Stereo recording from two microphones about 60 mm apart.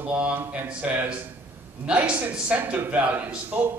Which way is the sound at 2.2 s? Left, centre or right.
Right.